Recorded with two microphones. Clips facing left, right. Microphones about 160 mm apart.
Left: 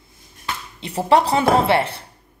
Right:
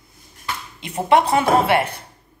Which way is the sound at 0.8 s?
35° left (ahead or behind).